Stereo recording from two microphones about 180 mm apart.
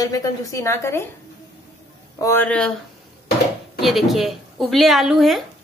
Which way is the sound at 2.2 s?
15° left (ahead or behind).